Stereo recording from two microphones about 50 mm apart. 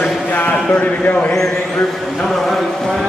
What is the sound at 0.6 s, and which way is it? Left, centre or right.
Speech, left.